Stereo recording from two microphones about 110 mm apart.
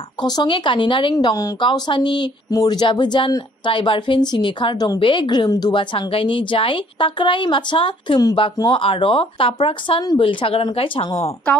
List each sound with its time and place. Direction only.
0.2 s speech: 50° left (ahead or behind)
1.1 s speech: 30° left (ahead or behind)
1.6 s speech: 45° left (ahead or behind)